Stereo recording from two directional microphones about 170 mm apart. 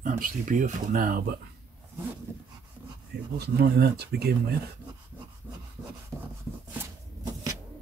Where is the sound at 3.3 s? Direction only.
70° right (ahead or behind).